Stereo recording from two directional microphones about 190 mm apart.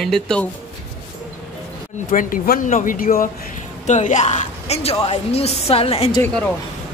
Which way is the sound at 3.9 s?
40° left (ahead or behind).